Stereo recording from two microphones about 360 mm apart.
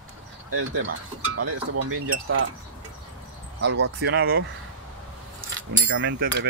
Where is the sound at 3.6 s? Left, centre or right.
Right.